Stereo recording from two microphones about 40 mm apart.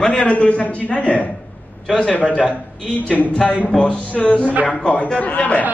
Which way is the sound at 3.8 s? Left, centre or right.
Left.